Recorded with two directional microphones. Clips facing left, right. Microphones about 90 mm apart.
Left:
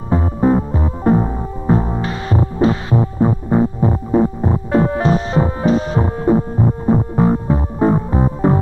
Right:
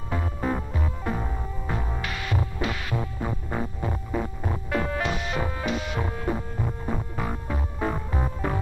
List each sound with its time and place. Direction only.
0.1 s music: 30° left (ahead or behind)